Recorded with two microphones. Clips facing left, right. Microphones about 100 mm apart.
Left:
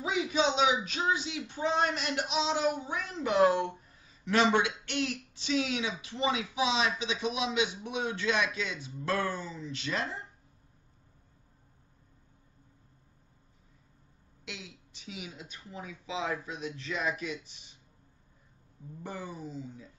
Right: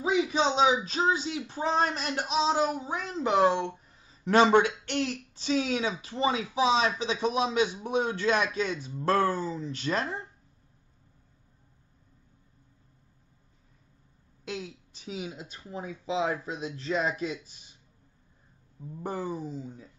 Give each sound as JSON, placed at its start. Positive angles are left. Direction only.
{"t": 0.0, "sound": "speech", "side_deg": -35}
{"t": 4.2, "sound": "speech", "side_deg": -45}
{"t": 14.4, "sound": "a woman's voice", "side_deg": -45}
{"t": 19.0, "sound": "speech", "side_deg": -45}